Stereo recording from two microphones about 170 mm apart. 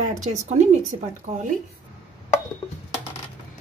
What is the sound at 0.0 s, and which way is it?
A woman's voice, 45° right (ahead or behind).